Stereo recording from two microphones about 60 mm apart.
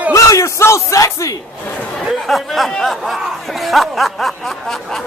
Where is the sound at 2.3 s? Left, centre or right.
Centre.